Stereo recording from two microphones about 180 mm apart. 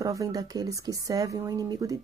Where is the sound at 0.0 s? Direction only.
20° right (ahead or behind).